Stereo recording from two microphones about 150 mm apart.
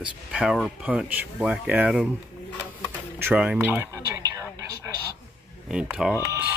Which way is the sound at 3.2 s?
10° right (ahead or behind).